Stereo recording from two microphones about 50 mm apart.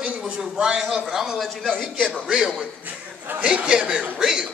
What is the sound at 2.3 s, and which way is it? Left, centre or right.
Speech, centre.